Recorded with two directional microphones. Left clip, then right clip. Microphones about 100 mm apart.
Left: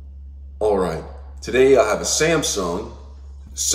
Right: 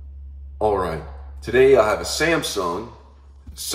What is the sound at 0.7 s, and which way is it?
A man's voice, 30° right (ahead or behind).